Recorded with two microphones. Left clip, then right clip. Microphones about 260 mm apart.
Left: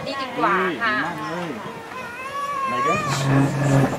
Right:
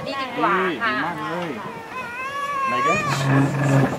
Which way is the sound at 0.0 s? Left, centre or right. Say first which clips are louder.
Even; centre.